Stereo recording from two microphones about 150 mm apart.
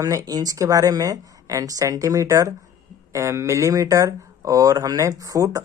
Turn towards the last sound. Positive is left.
turn(degrees=-25)  # may be behind; listen again after turning